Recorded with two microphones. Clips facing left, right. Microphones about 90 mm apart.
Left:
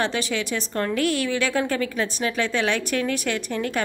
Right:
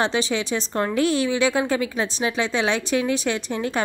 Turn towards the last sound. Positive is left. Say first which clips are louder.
# right 1 dB
turn(degrees=-25)  # may be behind; listen again after turning